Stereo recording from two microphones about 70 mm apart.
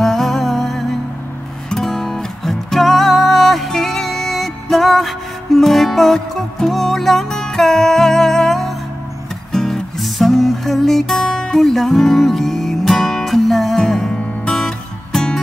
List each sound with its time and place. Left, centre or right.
0.0 s music: centre
14.4 s guitar: centre
15.1 s music: centre